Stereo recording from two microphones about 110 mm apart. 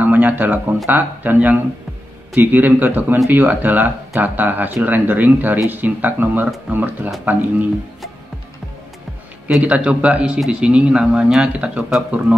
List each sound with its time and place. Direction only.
0.0 s speech: 15° right (ahead or behind)
9.6 s speech: 10° right (ahead or behind)